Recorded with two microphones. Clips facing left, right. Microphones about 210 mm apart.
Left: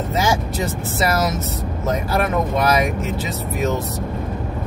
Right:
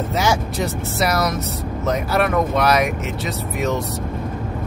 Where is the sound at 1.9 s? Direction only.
Centre (ahead or behind).